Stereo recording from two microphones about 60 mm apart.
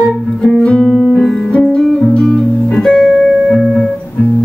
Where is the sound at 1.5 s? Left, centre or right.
Centre.